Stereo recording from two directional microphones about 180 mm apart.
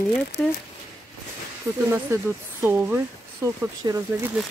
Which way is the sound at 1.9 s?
15° right (ahead or behind).